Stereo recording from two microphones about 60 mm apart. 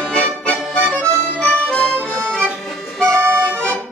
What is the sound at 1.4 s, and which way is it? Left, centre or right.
Accordion, centre.